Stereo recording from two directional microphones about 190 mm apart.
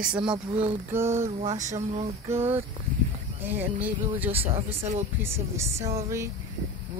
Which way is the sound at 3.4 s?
10° right (ahead or behind).